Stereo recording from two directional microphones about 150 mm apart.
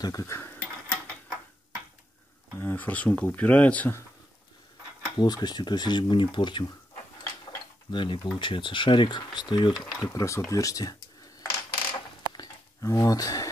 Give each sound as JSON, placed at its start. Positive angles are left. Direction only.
{"t": 0.0, "sound": "speech", "side_deg": 20}
{"t": 2.6, "sound": "speech", "side_deg": 10}
{"t": 5.0, "sound": "speech", "side_deg": 25}
{"t": 7.9, "sound": "speech", "side_deg": 30}
{"t": 9.9, "sound": "speech", "side_deg": 20}
{"t": 11.9, "sound": "a sound", "side_deg": 25}